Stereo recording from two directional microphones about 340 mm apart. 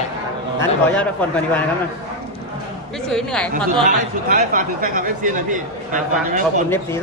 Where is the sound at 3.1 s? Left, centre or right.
Centre.